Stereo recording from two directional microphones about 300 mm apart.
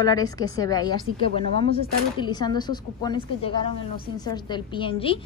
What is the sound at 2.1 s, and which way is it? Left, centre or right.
A woman's voice, centre.